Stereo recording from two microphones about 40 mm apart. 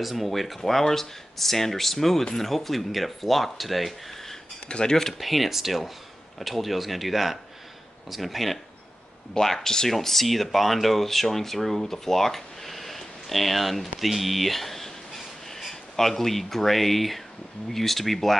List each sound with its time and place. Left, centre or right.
0.0 s speech: centre
4.6 s speech: left
4.9 s speech: centre
5.2 s speech: centre